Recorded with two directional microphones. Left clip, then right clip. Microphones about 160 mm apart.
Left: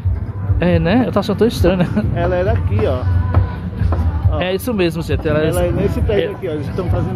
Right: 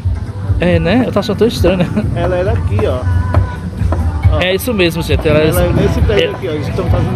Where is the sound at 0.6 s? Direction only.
20° left (ahead or behind).